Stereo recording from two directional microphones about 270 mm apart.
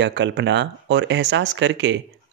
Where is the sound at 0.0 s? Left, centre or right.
Right.